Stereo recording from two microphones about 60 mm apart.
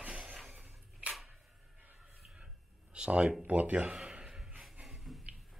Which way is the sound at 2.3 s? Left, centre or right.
Centre.